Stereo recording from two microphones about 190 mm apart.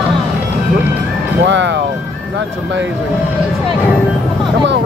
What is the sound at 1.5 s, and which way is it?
Speech, 70° right (ahead or behind).